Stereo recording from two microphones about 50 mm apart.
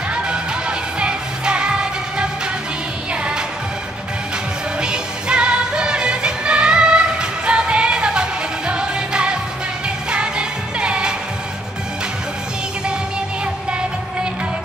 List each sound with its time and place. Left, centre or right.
0.1 s music: centre
4.7 s music: centre